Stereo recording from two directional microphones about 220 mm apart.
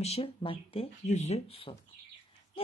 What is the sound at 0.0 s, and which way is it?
Speech, 25° left (ahead or behind).